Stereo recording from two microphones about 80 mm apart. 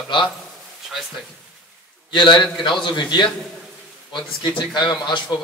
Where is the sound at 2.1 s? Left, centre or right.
Left.